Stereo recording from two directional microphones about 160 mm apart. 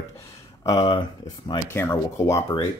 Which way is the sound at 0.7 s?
30° left (ahead or behind).